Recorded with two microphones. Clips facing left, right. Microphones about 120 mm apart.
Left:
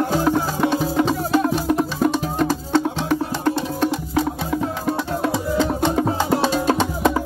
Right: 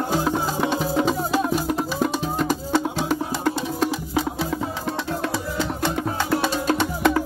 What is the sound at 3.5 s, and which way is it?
Music, 10° right (ahead or behind).